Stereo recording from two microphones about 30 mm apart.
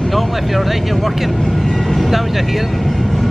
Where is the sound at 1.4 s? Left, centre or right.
Centre.